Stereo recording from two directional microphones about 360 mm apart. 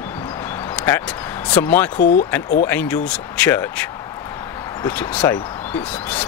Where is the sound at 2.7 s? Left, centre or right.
Centre.